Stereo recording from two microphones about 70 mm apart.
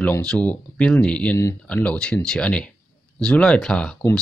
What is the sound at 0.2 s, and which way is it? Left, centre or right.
Speech, centre.